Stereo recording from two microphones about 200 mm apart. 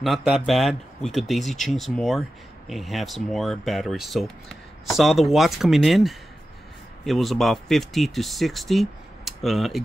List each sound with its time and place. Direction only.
0.0 s speech: centre (ahead or behind)